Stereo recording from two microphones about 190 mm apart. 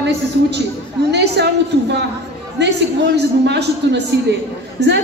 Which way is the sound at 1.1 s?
60° right (ahead or behind).